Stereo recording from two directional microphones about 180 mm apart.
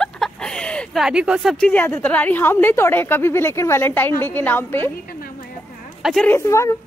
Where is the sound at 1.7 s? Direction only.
10° left (ahead or behind).